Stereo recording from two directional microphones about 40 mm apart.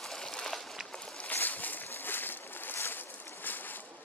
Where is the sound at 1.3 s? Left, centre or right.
Left.